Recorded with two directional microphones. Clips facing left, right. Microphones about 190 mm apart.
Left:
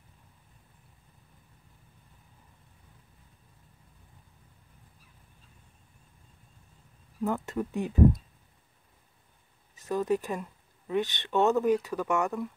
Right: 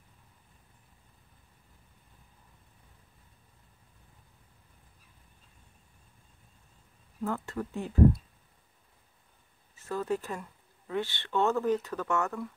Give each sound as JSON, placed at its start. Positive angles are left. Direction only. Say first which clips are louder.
{"t": 7.2, "sound": "speech", "louder": "left 3 dB", "side_deg": 15}
{"t": 9.8, "sound": "speech", "louder": "left 4 dB", "side_deg": 15}